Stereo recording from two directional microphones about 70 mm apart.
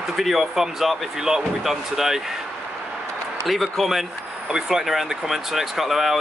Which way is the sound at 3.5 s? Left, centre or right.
Centre.